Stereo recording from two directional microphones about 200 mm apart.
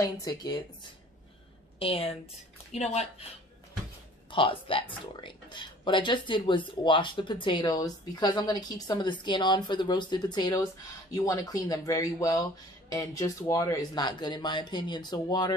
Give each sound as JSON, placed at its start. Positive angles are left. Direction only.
{"t": 0.0, "sound": "speech", "side_deg": 20}
{"t": 1.8, "sound": "speech", "side_deg": 30}
{"t": 4.3, "sound": "speech", "side_deg": 25}